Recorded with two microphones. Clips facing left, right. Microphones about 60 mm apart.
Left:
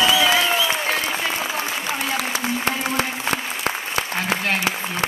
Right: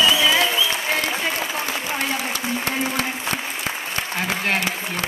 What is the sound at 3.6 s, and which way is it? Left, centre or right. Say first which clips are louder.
Applause: left 2 dB; left.